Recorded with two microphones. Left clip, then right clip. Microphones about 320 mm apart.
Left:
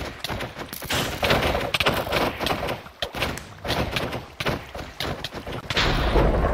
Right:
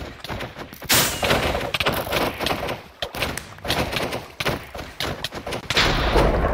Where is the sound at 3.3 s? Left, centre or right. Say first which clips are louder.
Right 2 dB; centre.